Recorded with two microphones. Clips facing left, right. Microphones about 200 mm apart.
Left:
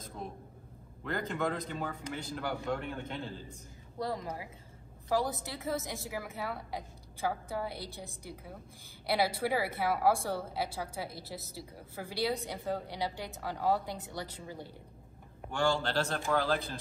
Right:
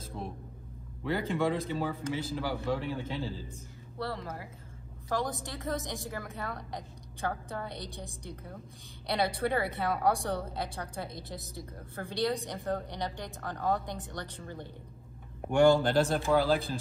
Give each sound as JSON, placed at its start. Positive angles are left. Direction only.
{"t": 1.0, "sound": "a woman's voice", "side_deg": -5}
{"t": 4.0, "sound": "a woman's voice", "side_deg": 15}
{"t": 15.5, "sound": "speech", "side_deg": -20}